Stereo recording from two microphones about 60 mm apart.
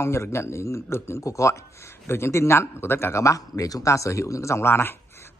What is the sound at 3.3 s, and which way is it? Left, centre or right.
A man's voice, left.